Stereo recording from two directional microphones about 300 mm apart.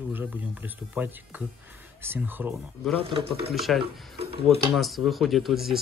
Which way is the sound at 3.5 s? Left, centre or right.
Centre.